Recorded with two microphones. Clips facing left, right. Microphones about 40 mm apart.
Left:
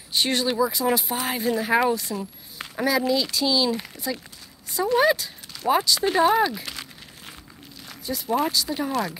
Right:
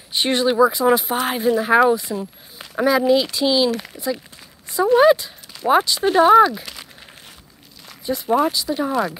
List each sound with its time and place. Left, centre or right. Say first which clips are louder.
0.1 s speech: right 5 dB; right
6.0 s speech: right 6 dB; centre
6.3 s speech: right 9 dB; centre
8.0 s speech: right 6 dB; right
8.4 s speech: right 5 dB; centre